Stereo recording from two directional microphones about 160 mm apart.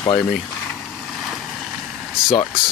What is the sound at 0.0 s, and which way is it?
Speech, 25° left (ahead or behind).